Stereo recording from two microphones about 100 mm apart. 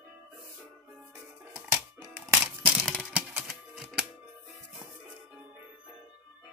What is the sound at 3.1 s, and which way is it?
Typewriter, 15° right (ahead or behind).